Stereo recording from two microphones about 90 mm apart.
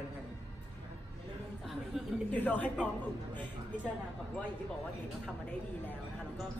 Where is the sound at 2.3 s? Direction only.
20° left (ahead or behind).